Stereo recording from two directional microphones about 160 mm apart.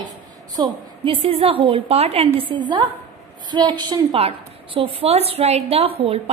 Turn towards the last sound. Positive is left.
turn(degrees=-40)  # may be behind; listen again after turning